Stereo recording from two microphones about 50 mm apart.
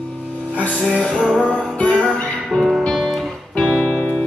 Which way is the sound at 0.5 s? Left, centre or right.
Left.